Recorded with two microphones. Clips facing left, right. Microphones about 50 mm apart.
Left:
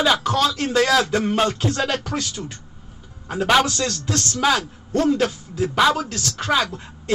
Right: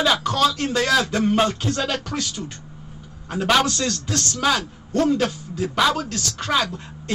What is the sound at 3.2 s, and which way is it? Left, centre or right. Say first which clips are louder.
Speech: left 1 dB; centre.